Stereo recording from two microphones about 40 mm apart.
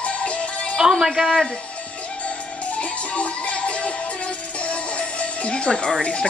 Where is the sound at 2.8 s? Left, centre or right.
Left; by 6.0 s centre.